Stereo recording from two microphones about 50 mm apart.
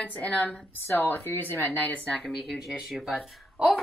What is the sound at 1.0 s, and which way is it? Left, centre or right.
Speech, left.